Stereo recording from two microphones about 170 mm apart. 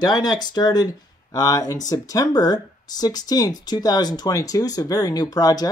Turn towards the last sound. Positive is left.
turn(degrees=20)  # may be behind; listen again after turning